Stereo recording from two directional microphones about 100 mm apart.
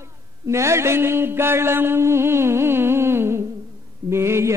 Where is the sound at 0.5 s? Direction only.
30° right (ahead or behind).